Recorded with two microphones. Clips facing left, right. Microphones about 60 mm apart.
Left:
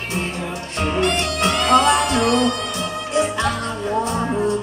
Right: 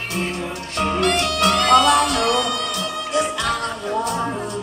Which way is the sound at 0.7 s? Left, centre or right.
Left.